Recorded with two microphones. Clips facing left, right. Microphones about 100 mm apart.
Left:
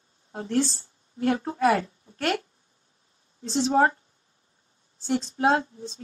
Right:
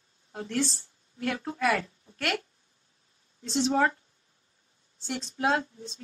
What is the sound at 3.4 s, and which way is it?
Speech, 35° left (ahead or behind).